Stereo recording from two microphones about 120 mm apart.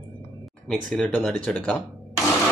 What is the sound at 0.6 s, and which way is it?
Speech, 5° left (ahead or behind).